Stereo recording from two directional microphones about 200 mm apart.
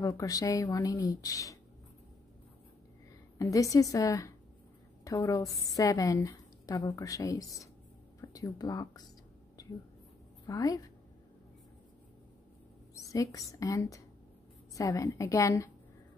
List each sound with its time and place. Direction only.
0.0 s a woman's voice: 15° left (ahead or behind)
3.3 s a woman's voice: 15° left (ahead or behind)
10.4 s a woman's voice: 20° left (ahead or behind)
12.9 s a woman's voice: 15° left (ahead or behind)